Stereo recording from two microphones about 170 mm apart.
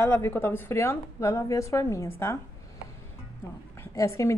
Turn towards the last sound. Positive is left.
turn(degrees=20)  # may be behind; listen again after turning